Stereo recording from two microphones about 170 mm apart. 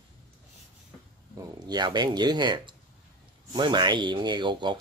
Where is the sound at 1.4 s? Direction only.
25° right (ahead or behind).